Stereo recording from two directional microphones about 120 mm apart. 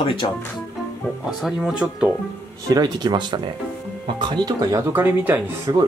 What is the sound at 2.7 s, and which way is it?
Speech, 35° right (ahead or behind).